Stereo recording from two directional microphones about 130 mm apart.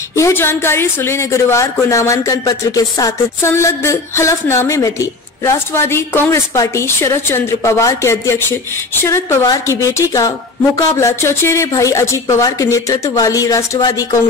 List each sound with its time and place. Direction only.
0.1 s a woman's voice: 20° left (ahead or behind)